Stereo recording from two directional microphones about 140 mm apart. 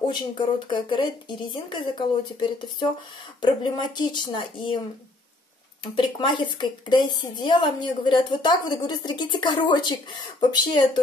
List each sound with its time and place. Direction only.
0.7 s a woman's voice: 35° left (ahead or behind)
5.9 s a woman's voice: 35° left (ahead or behind)